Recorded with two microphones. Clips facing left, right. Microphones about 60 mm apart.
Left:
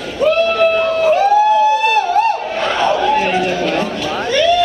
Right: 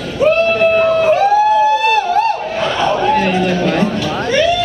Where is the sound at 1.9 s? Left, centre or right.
Centre.